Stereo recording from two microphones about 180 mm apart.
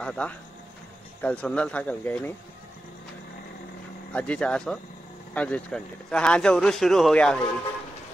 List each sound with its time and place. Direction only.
0.0 s speech: 5° left (ahead or behind)
4.1 s speech: 5° left (ahead or behind)